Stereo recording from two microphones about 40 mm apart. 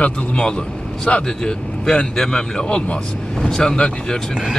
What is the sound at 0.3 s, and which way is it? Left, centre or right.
Speech, left.